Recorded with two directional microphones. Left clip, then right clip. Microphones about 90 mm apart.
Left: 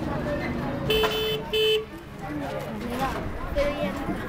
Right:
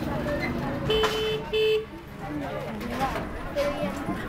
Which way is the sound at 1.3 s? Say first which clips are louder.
Left 1 dB; 40° left (ahead or behind).